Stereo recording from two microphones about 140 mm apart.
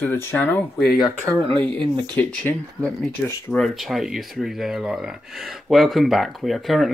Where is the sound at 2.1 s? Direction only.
10° left (ahead or behind).